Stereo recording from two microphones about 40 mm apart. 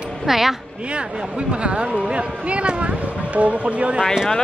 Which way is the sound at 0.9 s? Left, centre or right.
Right.